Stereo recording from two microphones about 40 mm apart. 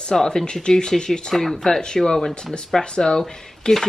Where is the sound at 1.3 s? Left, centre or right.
Centre.